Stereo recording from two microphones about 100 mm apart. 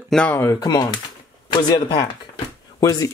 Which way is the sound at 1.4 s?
45° left (ahead or behind).